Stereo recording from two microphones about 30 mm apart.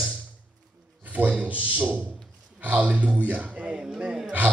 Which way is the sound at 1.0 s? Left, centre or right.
Right.